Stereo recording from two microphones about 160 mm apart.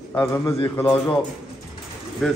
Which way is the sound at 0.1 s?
10° left (ahead or behind).